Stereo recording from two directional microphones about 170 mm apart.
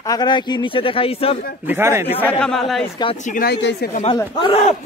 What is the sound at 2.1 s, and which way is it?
Speech, 5° left (ahead or behind).